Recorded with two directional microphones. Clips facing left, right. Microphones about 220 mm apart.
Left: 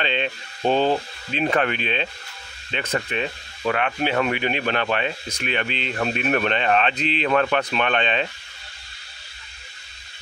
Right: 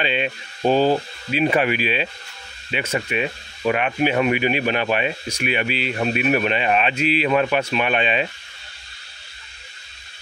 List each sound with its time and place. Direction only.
0.0 s speech: 10° right (ahead or behind)